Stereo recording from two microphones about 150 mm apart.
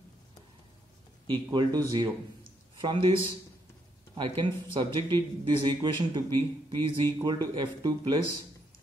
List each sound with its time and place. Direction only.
1.2 s speech: 30° right (ahead or behind)
4.2 s speech: 30° right (ahead or behind)